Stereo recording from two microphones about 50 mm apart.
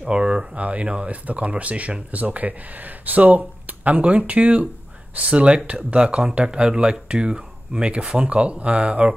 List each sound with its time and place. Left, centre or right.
0.0 s speech: right